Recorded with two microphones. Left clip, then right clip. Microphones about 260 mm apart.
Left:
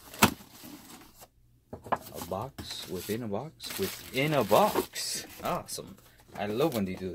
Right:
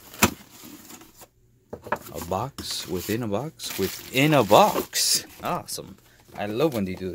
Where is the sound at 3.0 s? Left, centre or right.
Right.